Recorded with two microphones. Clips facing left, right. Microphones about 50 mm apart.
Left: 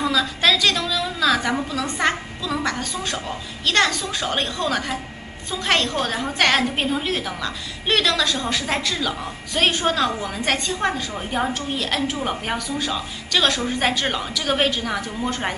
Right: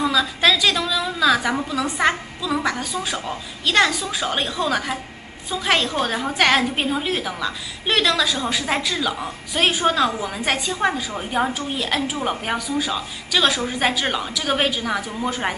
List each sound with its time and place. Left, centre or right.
0.0 s a woman's voice: centre